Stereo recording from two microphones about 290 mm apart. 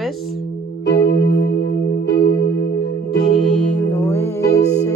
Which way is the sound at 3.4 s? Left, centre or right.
Centre.